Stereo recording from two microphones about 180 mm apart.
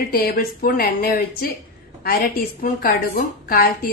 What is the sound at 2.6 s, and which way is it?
A woman's voice, 55° left (ahead or behind).